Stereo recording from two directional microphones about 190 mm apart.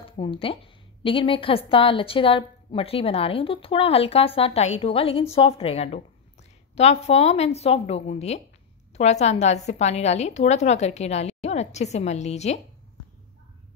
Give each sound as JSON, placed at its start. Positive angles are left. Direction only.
{"t": 0.0, "sound": "a woman's voice", "side_deg": 30}